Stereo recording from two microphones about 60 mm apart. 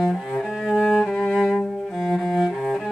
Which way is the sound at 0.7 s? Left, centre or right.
Centre.